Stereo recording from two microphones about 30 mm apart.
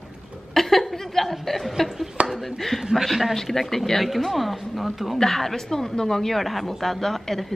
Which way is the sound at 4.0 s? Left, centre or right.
Centre.